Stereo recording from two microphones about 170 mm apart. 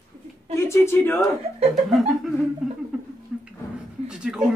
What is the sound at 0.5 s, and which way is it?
Speech, 15° left (ahead or behind).